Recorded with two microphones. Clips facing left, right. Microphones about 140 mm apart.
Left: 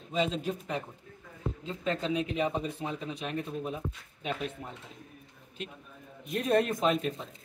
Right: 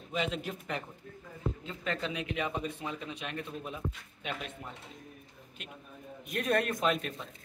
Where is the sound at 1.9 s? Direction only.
35° left (ahead or behind).